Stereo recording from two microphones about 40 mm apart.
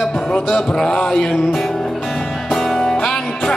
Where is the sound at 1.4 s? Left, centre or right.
Centre.